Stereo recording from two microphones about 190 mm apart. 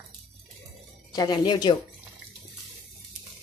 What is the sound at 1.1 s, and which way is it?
Speech, 20° left (ahead or behind).